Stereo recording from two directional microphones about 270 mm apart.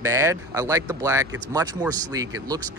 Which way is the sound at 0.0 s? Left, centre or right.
Centre.